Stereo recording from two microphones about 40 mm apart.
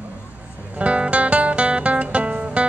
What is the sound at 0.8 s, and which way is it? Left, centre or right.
Music, right.